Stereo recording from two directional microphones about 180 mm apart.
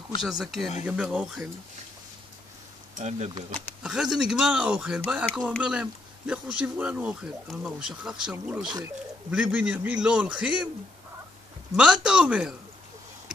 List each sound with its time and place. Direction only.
0.2 s speech: centre (ahead or behind)
2.9 s speech: 40° right (ahead or behind)
3.8 s speech: 5° right (ahead or behind)
11.7 s speech: 5° right (ahead or behind)